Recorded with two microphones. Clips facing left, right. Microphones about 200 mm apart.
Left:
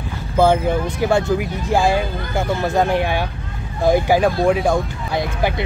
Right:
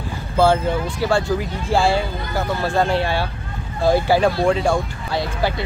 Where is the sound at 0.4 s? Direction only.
20° left (ahead or behind).